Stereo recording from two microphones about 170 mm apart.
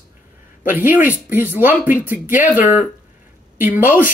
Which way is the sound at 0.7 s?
10° right (ahead or behind).